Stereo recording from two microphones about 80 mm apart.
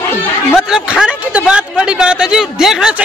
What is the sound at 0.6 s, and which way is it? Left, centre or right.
Speech, centre.